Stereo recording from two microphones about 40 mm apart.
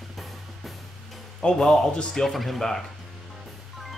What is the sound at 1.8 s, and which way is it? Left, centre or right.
Speech, left.